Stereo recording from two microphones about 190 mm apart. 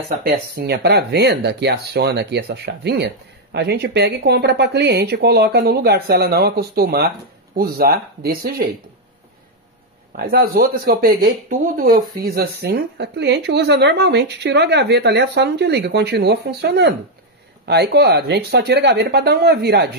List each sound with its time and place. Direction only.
0.2 s speech: 55° right (ahead or behind)
10.1 s speech: 55° right (ahead or behind)